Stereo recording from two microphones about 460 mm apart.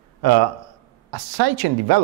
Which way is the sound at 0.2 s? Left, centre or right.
Right.